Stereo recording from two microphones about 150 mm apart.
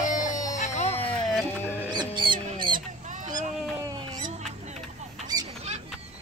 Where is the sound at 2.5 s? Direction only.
30° right (ahead or behind).